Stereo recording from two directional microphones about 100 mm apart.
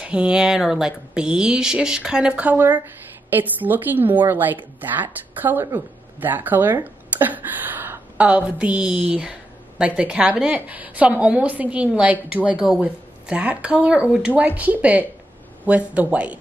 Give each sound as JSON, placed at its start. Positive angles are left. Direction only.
{"t": 0.0, "sound": "speech", "side_deg": -10}